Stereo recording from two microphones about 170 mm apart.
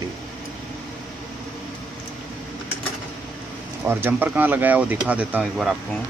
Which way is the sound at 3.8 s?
10° right (ahead or behind).